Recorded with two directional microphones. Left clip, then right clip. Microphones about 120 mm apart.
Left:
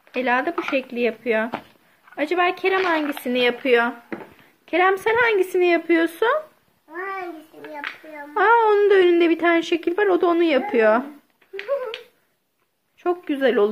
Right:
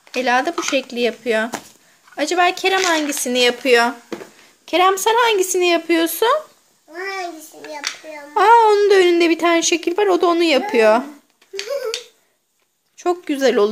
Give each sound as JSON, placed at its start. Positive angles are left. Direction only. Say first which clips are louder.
{"t": 0.1, "sound": "a woman's voice", "louder": "right 4 dB", "side_deg": -20}
{"t": 8.4, "sound": "speech", "louder": "right 5 dB", "side_deg": -20}
{"t": 13.0, "sound": "speech", "louder": "right 3 dB", "side_deg": -25}